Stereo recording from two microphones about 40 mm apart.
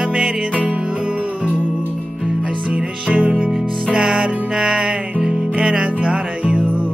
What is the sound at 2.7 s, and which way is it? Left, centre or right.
Music, right.